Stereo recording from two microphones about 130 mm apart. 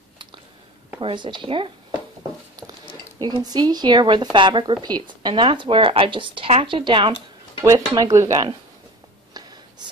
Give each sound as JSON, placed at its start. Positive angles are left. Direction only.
{"t": 1.0, "sound": "speech", "side_deg": -35}
{"t": 3.2, "sound": "speech", "side_deg": -30}
{"t": 7.9, "sound": "speech", "side_deg": -30}